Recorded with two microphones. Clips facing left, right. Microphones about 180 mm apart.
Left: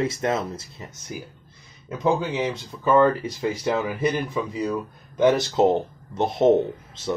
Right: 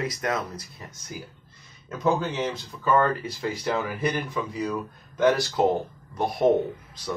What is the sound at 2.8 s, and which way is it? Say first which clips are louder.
Speech: left 4 dB; 20° left (ahead or behind).